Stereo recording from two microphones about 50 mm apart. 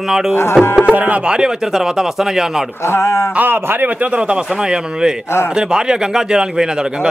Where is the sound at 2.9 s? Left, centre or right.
Left.